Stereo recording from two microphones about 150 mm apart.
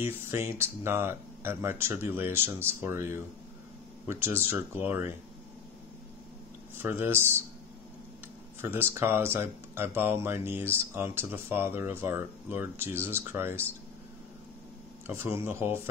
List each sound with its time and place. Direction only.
0.0 s speech: 15° right (ahead or behind)
6.8 s speech: 15° right (ahead or behind)
8.5 s speech: 15° right (ahead or behind)
15.0 s speech: 15° right (ahead or behind)